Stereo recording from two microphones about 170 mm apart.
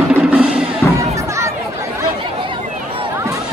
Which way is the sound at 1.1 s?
15° right (ahead or behind).